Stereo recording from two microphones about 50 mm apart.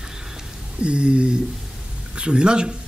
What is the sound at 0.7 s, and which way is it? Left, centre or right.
Speech, right.